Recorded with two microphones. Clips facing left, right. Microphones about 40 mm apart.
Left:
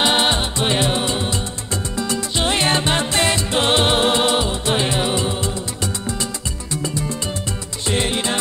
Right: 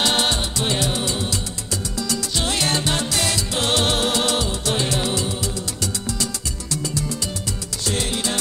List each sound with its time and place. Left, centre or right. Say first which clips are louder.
0.0 s music: left 3 dB; left